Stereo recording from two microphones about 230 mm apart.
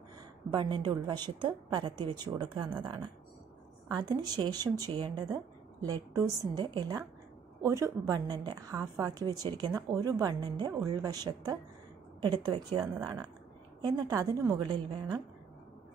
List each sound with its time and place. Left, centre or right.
0.5 s a woman's voice: centre